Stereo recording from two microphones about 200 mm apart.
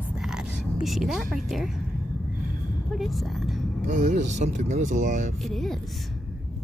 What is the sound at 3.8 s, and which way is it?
Speech, 35° right (ahead or behind).